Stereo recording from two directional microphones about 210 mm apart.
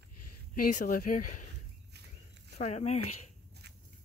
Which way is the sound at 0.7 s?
40° left (ahead or behind).